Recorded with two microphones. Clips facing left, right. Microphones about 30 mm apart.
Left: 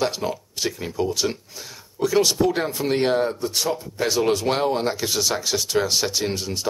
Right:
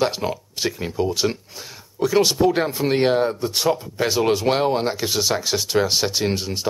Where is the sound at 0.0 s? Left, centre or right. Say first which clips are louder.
Right 2 dB; centre.